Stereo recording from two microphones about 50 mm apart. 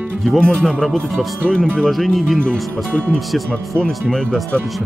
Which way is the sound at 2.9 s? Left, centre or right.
Left.